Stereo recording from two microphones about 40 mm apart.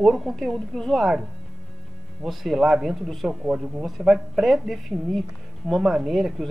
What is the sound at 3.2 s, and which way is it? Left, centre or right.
Speech, right.